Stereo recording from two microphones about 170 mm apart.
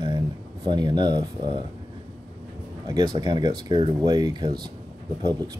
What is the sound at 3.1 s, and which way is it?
Speech, 25° right (ahead or behind).